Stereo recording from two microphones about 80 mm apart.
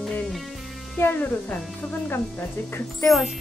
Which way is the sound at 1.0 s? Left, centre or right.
Left.